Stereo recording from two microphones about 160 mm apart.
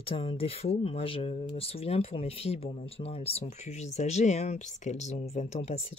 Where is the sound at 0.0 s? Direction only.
35° left (ahead or behind).